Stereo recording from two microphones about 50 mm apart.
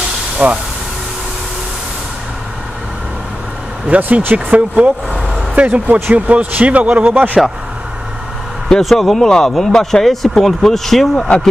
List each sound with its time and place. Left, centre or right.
0.4 s speech: right
3.8 s speech: right
8.7 s speech: centre